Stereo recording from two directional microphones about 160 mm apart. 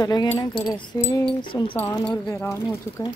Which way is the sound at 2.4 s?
15° left (ahead or behind).